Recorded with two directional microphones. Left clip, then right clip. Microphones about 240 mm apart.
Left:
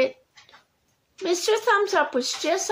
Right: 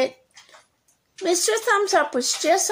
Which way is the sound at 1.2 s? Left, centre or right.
Centre.